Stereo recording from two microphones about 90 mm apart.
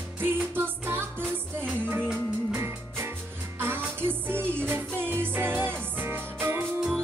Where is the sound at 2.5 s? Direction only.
25° right (ahead or behind).